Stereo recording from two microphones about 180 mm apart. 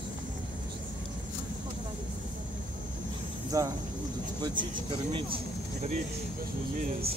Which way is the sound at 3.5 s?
20° right (ahead or behind).